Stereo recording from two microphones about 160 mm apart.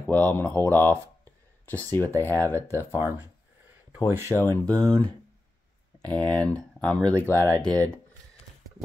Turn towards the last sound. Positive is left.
turn(degrees=10)  # may be behind; listen again after turning